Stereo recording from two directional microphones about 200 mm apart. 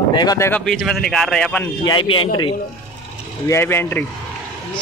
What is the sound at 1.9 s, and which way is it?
Speech, 25° left (ahead or behind).